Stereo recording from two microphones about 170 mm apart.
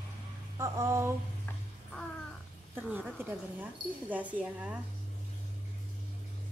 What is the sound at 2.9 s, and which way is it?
A woman's voice, 10° right (ahead or behind).